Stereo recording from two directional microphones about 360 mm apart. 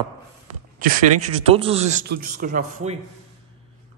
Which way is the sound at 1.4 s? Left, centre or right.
Centre.